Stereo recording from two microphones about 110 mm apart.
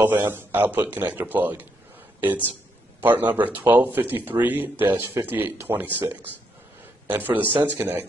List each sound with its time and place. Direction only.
0.0 s speech: 20° right (ahead or behind)